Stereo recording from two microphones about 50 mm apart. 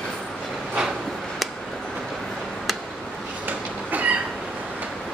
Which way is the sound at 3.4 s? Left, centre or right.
Right.